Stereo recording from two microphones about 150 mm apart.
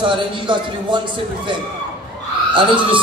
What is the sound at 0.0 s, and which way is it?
Speech, 35° right (ahead or behind).